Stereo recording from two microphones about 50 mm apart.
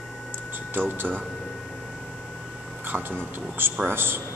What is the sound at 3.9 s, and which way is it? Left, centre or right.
Speech, right.